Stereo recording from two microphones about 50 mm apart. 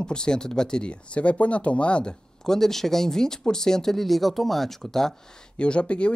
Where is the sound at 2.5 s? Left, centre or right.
Centre.